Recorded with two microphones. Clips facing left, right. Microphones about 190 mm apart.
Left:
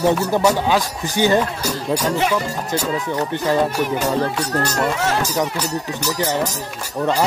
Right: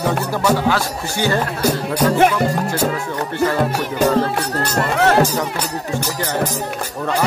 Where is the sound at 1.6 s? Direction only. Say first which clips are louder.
Right 4 dB; 55° right (ahead or behind).